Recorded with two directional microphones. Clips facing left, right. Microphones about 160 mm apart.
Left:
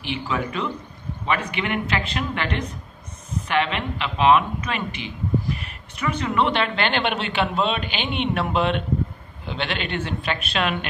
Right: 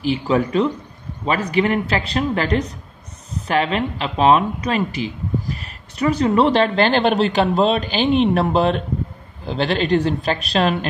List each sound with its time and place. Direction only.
0.0 s speech: 35° right (ahead or behind)